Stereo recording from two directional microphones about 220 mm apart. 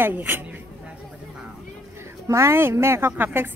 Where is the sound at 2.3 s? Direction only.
10° right (ahead or behind).